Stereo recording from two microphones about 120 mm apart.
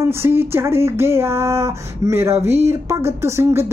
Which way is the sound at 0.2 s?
20° right (ahead or behind).